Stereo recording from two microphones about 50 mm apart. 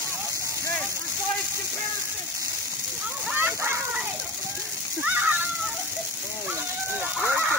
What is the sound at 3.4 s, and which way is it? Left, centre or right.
Rain, right.